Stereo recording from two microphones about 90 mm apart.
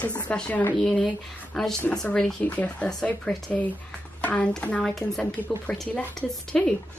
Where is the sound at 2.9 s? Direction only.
5° left (ahead or behind).